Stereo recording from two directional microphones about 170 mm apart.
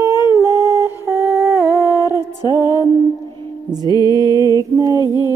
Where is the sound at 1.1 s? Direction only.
15° right (ahead or behind).